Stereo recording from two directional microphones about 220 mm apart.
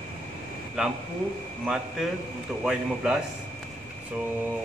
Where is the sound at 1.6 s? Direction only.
5° right (ahead or behind).